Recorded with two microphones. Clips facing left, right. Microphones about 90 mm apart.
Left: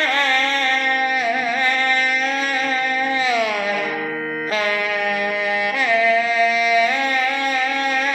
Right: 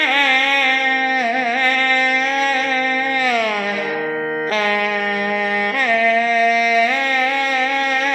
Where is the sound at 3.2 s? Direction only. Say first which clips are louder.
Right 2 dB; 50° right (ahead or behind).